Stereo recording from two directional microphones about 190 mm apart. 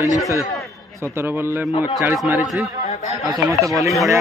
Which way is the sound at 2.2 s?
10° right (ahead or behind).